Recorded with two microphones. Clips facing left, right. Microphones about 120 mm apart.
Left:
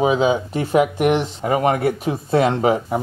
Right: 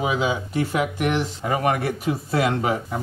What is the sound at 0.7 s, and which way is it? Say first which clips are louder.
Speech: left 9 dB; 55° left (ahead or behind).